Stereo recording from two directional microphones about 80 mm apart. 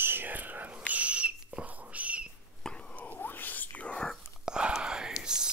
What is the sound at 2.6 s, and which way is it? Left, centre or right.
Whispering, centre.